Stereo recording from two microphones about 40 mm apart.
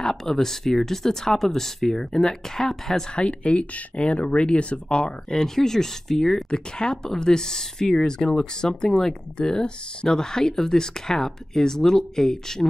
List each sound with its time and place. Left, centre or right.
0.0 s speech: centre
3.1 s speech: left